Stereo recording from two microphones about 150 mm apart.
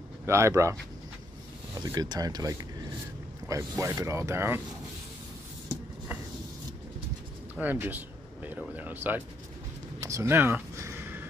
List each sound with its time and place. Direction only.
0.3 s speech: 20° right (ahead or behind)
1.8 s speech: 25° right (ahead or behind)
7.5 s a sound: 10° right (ahead or behind)